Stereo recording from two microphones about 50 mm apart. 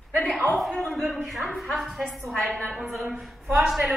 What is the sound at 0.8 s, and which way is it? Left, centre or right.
A woman's voice, centre.